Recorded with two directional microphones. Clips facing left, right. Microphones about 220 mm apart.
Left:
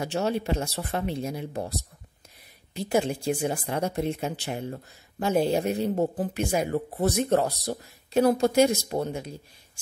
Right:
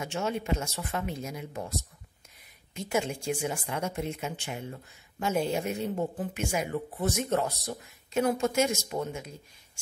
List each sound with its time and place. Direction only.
0.0 s speech: 35° left (ahead or behind)